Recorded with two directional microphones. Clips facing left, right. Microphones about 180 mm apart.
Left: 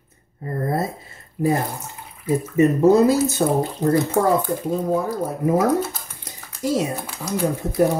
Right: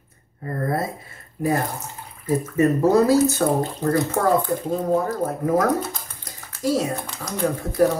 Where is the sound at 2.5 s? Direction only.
20° left (ahead or behind).